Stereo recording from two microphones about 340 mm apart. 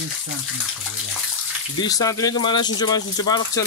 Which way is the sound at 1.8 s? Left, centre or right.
Centre.